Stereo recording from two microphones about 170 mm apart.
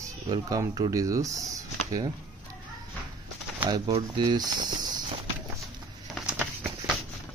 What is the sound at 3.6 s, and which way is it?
Speech, 25° right (ahead or behind).